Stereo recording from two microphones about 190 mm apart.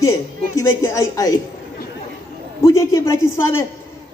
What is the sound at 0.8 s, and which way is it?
Speech, 15° left (ahead or behind).